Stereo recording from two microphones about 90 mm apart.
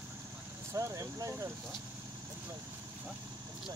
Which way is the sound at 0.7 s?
35° right (ahead or behind).